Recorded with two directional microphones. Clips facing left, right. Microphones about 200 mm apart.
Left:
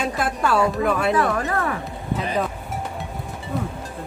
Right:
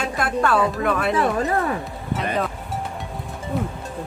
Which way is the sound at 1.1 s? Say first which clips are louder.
Right 1 dB; 25° right (ahead or behind).